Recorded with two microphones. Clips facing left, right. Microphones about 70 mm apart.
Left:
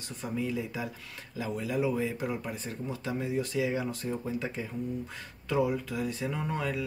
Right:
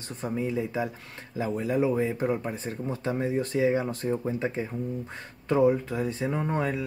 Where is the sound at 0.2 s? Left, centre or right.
Right.